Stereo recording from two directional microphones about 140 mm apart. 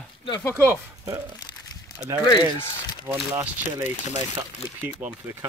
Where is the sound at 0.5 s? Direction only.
20° right (ahead or behind).